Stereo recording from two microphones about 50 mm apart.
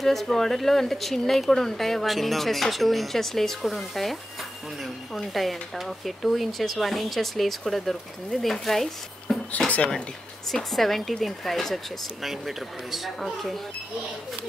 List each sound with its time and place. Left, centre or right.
0.0 s speech: centre
9.3 s a sound: centre
10.5 s speech: centre